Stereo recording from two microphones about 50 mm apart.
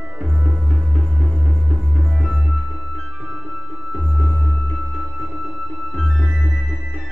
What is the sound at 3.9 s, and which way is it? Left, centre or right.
Music, centre.